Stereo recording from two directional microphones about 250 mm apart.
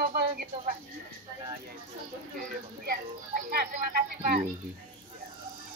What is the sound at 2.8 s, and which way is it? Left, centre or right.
Speech, right.